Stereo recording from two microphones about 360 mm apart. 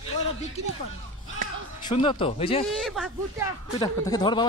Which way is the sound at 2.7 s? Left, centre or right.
Centre.